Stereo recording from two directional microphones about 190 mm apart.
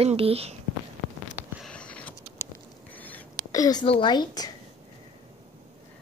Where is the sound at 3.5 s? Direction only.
20° left (ahead or behind).